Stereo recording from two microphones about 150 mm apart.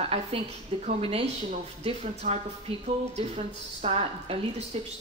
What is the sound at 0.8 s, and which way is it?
A woman's voice, 45° right (ahead or behind).